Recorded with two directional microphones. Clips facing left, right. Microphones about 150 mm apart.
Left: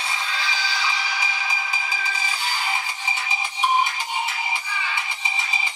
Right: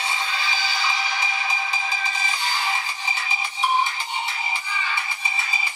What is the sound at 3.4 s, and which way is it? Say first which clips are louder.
Music: left 1 dB; 15° left (ahead or behind).